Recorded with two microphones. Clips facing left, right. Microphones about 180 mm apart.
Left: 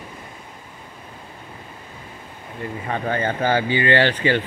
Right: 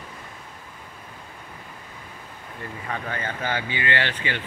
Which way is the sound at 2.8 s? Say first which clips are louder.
Left 8 dB; 30° left (ahead or behind).